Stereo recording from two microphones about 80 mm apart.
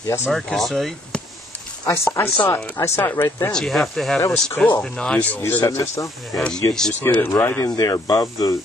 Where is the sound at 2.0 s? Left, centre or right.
Left.